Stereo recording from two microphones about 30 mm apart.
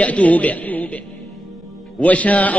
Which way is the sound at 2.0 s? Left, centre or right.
Left.